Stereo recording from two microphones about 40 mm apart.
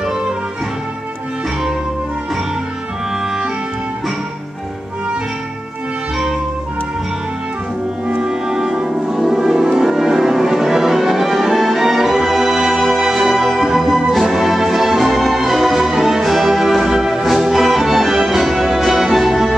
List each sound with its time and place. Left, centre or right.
8.1 s music: right
12.7 s music: centre